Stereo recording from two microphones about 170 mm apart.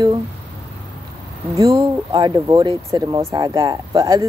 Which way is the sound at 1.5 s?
20° right (ahead or behind).